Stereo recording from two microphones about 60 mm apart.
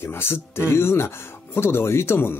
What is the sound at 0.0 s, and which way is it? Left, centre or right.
Speech, left.